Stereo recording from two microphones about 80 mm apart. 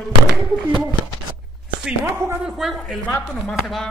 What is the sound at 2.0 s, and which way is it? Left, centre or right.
Speech, right.